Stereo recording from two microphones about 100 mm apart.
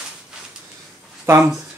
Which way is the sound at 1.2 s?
25° right (ahead or behind).